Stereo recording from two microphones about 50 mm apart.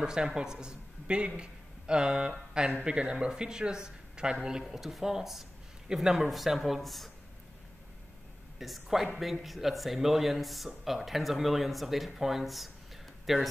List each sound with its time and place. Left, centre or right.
0.0 s a man's voice: centre
8.5 s speech: centre